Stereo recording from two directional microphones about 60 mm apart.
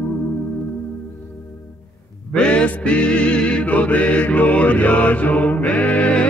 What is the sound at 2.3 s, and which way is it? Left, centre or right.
Music, centre.